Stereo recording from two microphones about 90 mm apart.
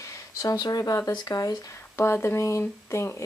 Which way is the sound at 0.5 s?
45° left (ahead or behind).